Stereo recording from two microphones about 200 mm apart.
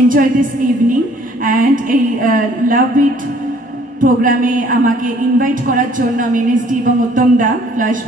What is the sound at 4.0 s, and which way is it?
A woman's voice, 40° right (ahead or behind).